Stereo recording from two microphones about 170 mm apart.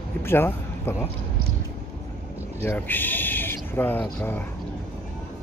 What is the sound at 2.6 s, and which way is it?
Speech, 15° left (ahead or behind).